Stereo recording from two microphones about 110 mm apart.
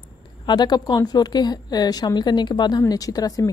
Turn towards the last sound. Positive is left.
turn(degrees=35)  # may be behind; listen again after turning